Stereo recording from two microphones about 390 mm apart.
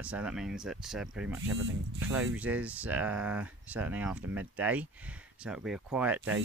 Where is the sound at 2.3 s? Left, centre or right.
Centre.